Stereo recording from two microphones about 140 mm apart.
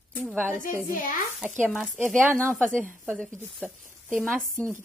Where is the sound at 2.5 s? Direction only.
5° left (ahead or behind).